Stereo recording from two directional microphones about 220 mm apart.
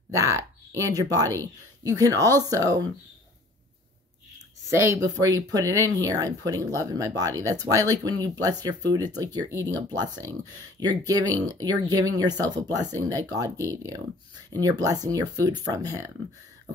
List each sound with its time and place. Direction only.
0.1 s speech: 15° right (ahead or behind)
4.6 s speech: 15° right (ahead or behind)